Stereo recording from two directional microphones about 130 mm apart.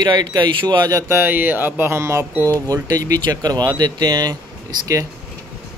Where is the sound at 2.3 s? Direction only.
15° left (ahead or behind).